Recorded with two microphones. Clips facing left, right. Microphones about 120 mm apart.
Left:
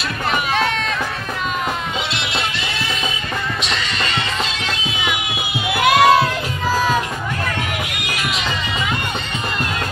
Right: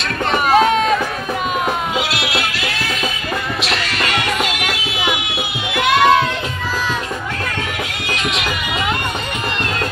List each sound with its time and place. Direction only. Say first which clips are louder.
0.3 s run: right 7 dB; 45° right (ahead or behind)
2.0 s music: right 3 dB; 5° right (ahead or behind)
5.7 s crowd: left 1 dB; 5° left (ahead or behind)